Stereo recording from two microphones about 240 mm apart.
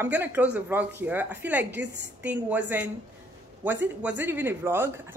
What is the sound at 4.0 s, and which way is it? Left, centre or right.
Speech, centre.